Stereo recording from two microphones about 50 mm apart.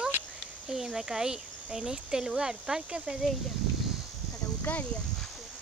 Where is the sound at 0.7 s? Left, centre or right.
Centre.